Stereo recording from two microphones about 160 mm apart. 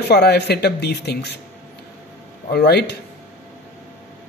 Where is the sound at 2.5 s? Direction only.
85° left.